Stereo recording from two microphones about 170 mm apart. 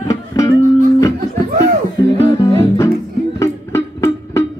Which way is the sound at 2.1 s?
20° left (ahead or behind).